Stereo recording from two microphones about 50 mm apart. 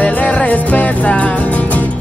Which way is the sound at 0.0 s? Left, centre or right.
Left.